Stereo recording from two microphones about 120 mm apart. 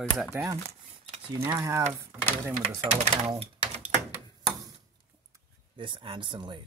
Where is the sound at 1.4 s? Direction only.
25° right (ahead or behind).